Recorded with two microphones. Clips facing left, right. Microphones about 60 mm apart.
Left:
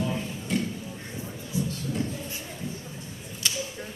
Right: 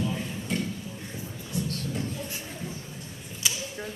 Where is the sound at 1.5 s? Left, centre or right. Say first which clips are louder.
Left 2 dB; right.